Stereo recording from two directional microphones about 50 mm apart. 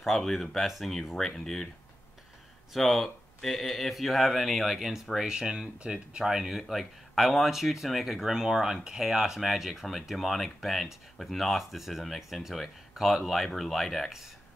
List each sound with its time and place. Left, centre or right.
0.0 s speech: centre
2.7 s speech: centre
5.2 s speech: centre